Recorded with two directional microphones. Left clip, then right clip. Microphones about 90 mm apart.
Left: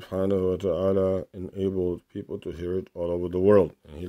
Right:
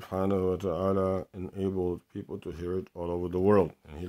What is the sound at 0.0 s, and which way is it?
Speech, 20° left (ahead or behind).